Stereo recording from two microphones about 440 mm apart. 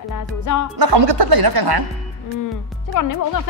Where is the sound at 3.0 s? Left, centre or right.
Left.